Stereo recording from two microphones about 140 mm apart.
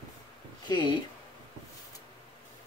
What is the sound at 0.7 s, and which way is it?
Speech, 30° left (ahead or behind).